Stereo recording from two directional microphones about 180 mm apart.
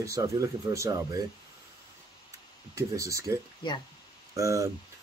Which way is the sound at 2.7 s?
15° right (ahead or behind).